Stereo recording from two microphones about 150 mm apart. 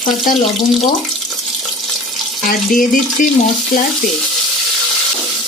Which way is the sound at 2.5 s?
65° left (ahead or behind).